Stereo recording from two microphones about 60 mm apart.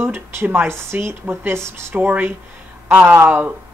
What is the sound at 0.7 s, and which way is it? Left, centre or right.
Speech, right.